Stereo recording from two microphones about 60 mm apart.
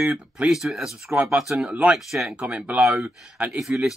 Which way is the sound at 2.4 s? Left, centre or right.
Right.